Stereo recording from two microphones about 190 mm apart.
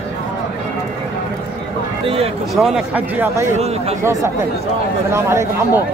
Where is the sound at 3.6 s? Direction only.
35° right (ahead or behind).